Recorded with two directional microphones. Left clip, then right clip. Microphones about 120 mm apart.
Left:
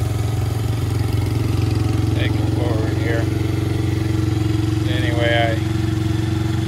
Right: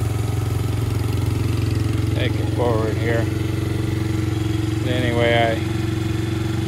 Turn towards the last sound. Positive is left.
turn(degrees=-70)  # may be behind; listen again after turning